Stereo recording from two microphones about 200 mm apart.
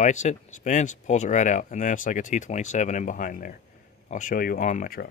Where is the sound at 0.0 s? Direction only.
35° left (ahead or behind).